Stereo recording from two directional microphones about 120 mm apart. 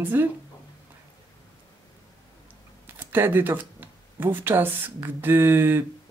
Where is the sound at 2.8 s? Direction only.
20° right (ahead or behind).